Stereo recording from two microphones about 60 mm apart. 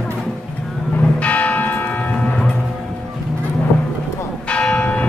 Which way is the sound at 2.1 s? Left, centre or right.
Centre.